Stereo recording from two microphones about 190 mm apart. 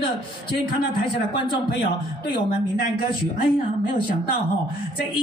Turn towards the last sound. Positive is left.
turn(degrees=50)  # may be behind; listen again after turning